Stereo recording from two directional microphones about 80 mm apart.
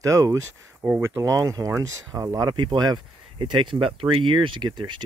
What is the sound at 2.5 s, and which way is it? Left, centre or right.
Speech, right.